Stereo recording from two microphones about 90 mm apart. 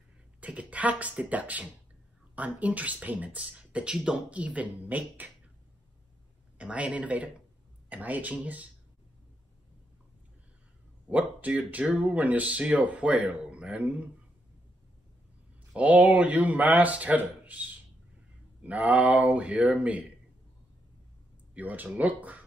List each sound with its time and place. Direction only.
0.4 s speech: 15° right (ahead or behind)
6.6 s speech: 15° right (ahead or behind)
11.1 s speech: 15° right (ahead or behind)
15.7 s speech: 15° right (ahead or behind)
21.5 s speech: 15° right (ahead or behind)